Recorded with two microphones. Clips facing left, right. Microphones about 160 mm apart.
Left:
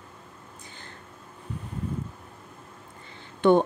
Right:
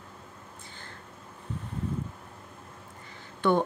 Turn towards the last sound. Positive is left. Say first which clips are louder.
# left 5 dB
turn(degrees=20)  # may be behind; listen again after turning